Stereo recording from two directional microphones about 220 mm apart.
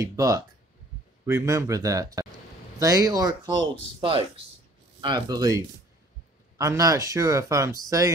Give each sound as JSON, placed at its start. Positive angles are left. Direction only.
{"t": 0.0, "sound": "speech", "side_deg": -15}
{"t": 5.0, "sound": "speech", "side_deg": -20}
{"t": 6.6, "sound": "speech", "side_deg": -15}